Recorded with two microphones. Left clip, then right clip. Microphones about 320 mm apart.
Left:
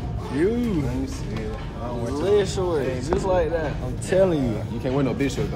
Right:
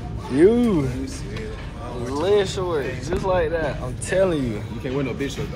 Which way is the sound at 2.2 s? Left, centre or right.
Centre.